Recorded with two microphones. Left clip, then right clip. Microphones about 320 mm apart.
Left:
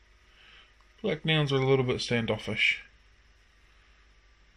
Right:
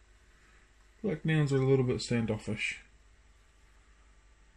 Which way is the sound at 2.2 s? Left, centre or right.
Left.